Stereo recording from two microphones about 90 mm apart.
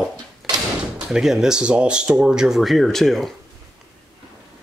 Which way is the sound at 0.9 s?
5° right (ahead or behind).